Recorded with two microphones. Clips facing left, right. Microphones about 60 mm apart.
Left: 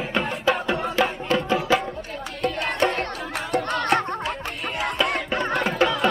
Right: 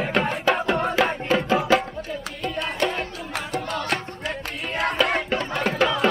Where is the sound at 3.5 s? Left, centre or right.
Left.